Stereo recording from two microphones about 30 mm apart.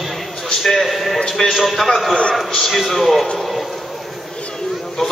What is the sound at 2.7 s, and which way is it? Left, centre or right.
Speech, centre.